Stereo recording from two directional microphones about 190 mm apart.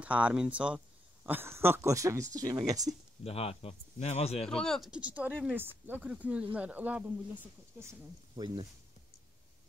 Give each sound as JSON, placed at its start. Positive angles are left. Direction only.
{"t": 0.0, "sound": "speech", "side_deg": -5}
{"t": 3.3, "sound": "speech", "side_deg": 30}
{"t": 4.5, "sound": "speech", "side_deg": 5}